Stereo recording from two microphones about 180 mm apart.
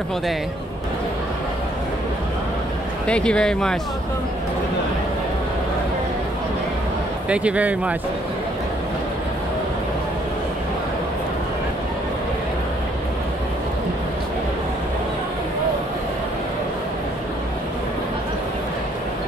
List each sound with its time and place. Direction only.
3.1 s speech: 5° left (ahead or behind)
7.2 s speech: 5° right (ahead or behind)